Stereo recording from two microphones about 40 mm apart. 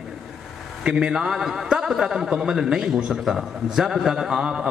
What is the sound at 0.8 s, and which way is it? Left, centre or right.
A man's voice, centre.